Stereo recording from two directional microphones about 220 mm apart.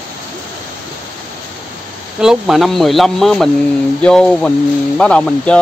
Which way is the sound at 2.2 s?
Centre (ahead or behind).